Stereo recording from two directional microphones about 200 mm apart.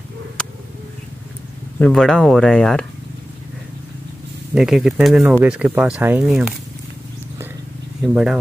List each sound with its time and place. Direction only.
1.8 s speech: 5° left (ahead or behind)
4.6 s speech: centre (ahead or behind)
8.1 s speech: centre (ahead or behind)